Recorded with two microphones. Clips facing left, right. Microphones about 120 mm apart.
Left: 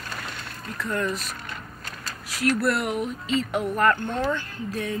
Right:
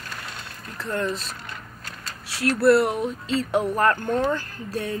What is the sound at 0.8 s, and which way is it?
Speech, 30° right (ahead or behind).